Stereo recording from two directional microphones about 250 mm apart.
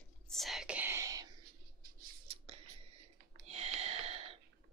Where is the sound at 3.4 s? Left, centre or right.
Right.